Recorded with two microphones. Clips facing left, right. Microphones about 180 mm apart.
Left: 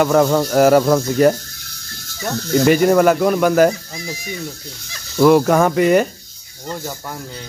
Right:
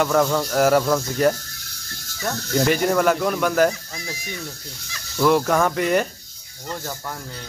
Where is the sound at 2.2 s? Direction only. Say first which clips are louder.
Left 6 dB; 5° left (ahead or behind).